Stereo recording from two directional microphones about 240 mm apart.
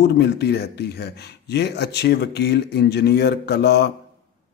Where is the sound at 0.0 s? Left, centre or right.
Left.